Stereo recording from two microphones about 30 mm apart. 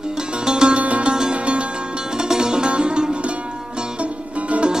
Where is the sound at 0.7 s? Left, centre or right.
Right.